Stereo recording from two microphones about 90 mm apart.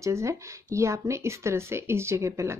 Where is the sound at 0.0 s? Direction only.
35° right (ahead or behind).